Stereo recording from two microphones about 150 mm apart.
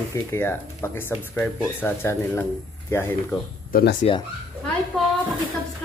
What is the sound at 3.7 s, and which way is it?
Speech, 90° left.